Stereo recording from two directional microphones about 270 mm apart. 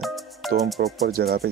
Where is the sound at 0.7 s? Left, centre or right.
Right.